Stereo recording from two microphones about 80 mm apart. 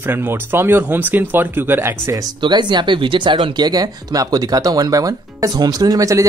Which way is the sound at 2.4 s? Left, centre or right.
Right.